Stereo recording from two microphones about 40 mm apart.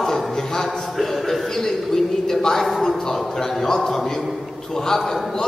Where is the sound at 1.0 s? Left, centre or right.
Centre.